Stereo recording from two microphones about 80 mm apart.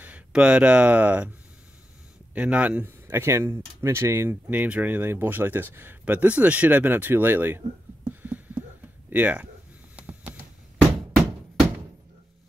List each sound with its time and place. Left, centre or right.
0.3 s speech: centre
2.3 s speech: centre
3.1 s speech: right
9.9 s a sound: centre